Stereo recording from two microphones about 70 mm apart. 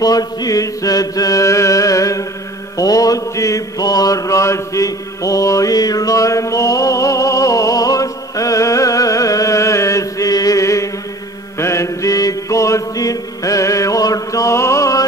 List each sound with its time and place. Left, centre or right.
0.0 s chant: left
2.8 s mantra: left